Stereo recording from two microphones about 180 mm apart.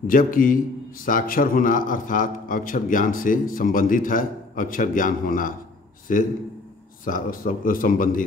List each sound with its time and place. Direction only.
0.0 s a man's voice: 50° left (ahead or behind)